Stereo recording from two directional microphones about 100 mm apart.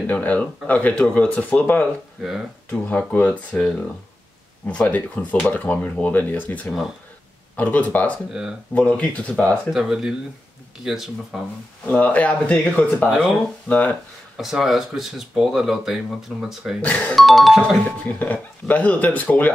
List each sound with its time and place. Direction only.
0.0 s speech: 15° left (ahead or behind)
4.6 s speech: 15° left (ahead or behind)
8.3 s speech: 5° right (ahead or behind)
8.7 s speech: 15° left (ahead or behind)
9.7 s speech: 5° right (ahead or behind)
11.8 s speech: 15° left (ahead or behind)
13.1 s speech: 5° right (ahead or behind)
13.7 s speech: 15° left (ahead or behind)
14.3 s speech: centre (ahead or behind)
18.0 s speech: 15° left (ahead or behind)